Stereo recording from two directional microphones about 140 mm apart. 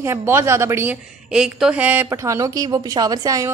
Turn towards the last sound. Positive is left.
turn(degrees=-25)  # may be behind; listen again after turning